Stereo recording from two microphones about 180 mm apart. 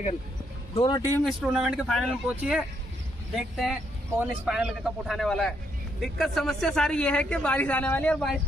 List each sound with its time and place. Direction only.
0.7 s speech: 25° left (ahead or behind)
1.2 s speech: centre (ahead or behind)